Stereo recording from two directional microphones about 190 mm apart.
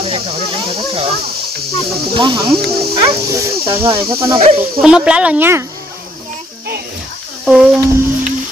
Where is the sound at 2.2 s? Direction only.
25° right (ahead or behind).